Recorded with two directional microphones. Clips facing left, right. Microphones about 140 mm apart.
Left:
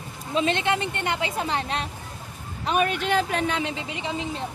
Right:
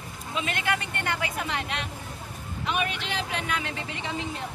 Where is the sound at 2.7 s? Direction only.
45° left (ahead or behind).